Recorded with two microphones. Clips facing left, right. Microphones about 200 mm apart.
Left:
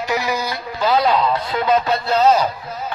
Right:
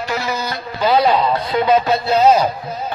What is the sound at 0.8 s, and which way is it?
A man's voice, centre (ahead or behind).